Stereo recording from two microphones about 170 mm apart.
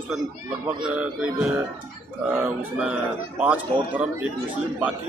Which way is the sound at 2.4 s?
10° right (ahead or behind).